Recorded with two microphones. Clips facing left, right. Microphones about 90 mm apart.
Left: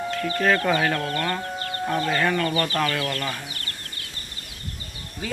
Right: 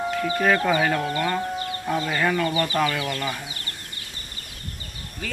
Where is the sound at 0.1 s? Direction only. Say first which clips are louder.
Even; 10° right (ahead or behind).